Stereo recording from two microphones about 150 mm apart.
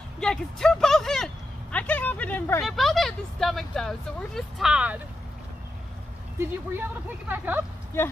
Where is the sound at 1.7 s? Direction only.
10° left (ahead or behind).